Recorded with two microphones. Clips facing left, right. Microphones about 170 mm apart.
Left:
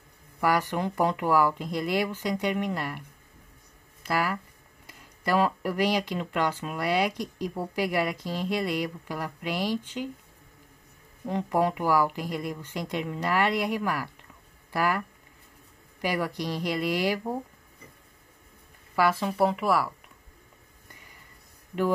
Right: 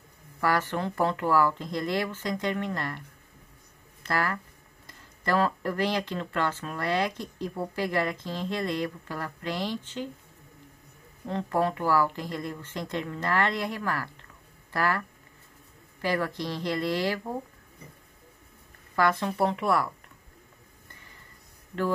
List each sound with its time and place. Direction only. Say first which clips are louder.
0.4 s speech: left 1 dB; 15° left (ahead or behind)
4.0 s speech: left 1 dB; 10° left (ahead or behind)
11.2 s speech: left 1 dB; 15° left (ahead or behind)
18.9 s speech: left 1 dB; 10° left (ahead or behind)